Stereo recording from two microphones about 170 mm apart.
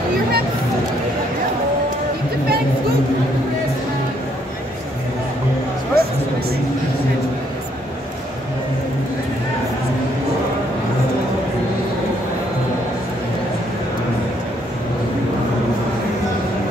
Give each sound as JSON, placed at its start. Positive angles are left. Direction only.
{"t": 6.0, "sound": "music", "side_deg": -65}